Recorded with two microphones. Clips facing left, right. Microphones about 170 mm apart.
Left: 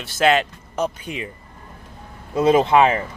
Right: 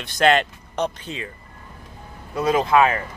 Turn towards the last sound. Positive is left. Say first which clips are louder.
# left 2 dB
turn(degrees=25)  # may be behind; listen again after turning